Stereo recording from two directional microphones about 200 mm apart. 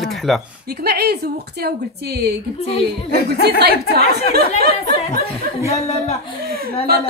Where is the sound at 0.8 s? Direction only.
50° right (ahead or behind).